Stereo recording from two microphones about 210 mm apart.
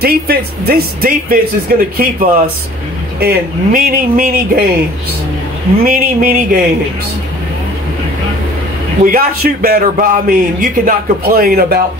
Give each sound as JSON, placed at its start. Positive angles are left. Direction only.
{"t": 0.0, "sound": "a man's voice", "side_deg": -45}
{"t": 5.9, "sound": "a man's voice", "side_deg": -45}
{"t": 9.0, "sound": "a man's voice", "side_deg": -45}